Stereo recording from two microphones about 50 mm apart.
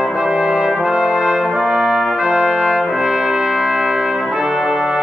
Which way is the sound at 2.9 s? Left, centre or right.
Centre.